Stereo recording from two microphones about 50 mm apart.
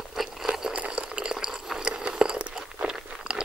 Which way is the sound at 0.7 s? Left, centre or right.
Right.